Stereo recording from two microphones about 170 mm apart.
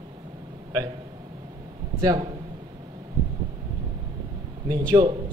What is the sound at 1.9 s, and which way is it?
Speech, 20° right (ahead or behind).